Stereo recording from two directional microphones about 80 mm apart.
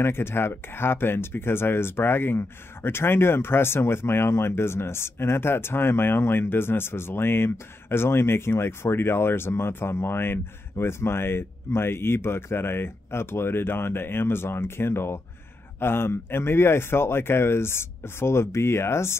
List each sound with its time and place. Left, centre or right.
0.0 s speech: left